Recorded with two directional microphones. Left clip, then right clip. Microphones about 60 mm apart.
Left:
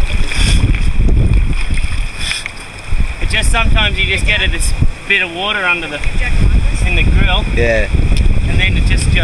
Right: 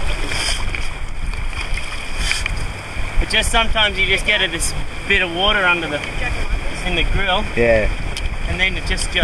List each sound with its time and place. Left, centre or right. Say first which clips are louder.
0.3 s boat: left 3 dB; centre
3.3 s speech: left 1 dB; centre
5.0 s speech: left 2 dB; centre
7.6 s speech: even; left
8.1 s boat: left 4 dB; centre